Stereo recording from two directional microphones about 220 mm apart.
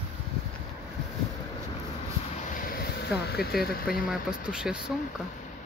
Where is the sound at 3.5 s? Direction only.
Centre (ahead or behind).